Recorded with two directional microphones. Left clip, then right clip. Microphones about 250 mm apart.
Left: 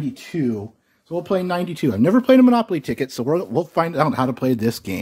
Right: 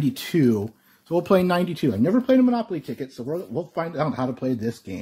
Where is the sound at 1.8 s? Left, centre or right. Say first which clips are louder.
Left 8 dB; left.